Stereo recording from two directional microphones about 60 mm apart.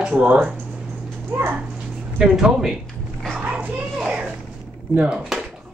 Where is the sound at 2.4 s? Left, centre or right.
Centre.